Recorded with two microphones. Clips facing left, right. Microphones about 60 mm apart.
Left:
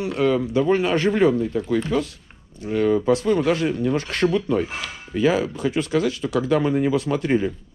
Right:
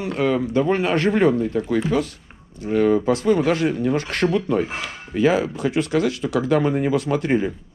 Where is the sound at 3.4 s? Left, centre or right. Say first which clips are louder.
Right 1 dB; right.